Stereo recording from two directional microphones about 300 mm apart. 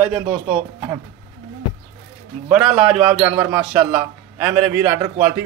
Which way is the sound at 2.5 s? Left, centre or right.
Centre.